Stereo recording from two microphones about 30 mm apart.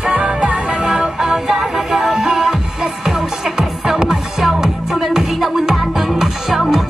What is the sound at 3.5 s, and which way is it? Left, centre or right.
Music, centre.